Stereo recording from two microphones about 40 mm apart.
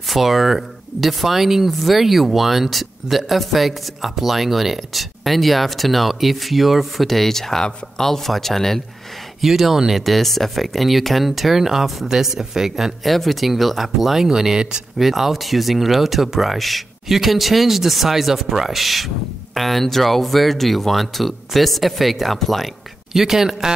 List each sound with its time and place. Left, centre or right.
0.1 s speech: centre
9.4 s speech: centre
10.0 s speech: centre
13.0 s speech: centre
23.1 s speech: centre